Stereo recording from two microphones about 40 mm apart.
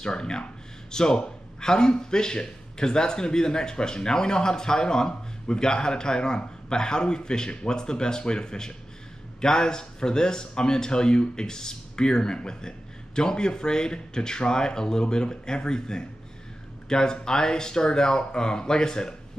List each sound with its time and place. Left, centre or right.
0.0 s speech: centre